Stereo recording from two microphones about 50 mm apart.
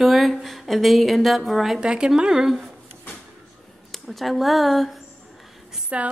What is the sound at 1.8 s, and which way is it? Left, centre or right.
Speech, centre.